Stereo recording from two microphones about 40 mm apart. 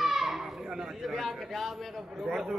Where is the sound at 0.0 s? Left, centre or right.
Centre.